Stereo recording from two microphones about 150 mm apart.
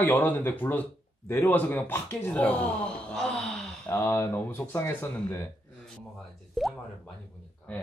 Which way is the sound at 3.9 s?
15° left (ahead or behind).